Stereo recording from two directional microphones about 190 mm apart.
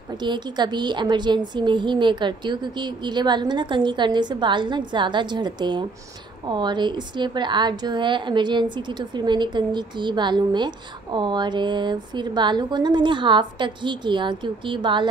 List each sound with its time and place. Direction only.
0.2 s a woman's voice: 25° right (ahead or behind)